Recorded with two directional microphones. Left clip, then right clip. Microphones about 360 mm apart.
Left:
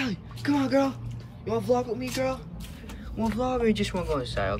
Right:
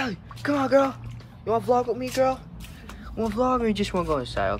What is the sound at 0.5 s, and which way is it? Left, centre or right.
Speech, right.